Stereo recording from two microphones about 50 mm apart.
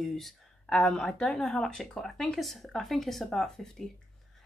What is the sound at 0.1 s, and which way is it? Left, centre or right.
Speech, centre.